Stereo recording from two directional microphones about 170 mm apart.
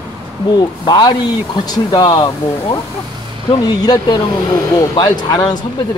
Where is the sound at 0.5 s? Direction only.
25° left (ahead or behind).